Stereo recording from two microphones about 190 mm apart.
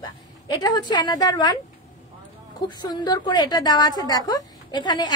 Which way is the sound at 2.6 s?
20° left (ahead or behind).